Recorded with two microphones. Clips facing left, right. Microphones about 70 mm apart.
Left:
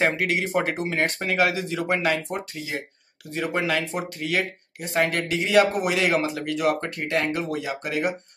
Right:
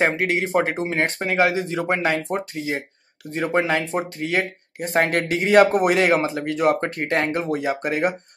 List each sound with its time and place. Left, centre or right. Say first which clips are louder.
0.1 s a man's voice: right 3 dB; right
4.8 s a man's voice: right 3 dB; right